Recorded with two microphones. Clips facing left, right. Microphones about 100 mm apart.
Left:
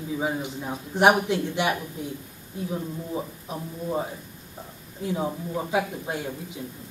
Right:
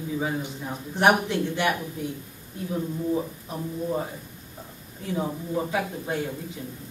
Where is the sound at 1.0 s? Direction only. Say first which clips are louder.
Left 1 dB; 15° left (ahead or behind).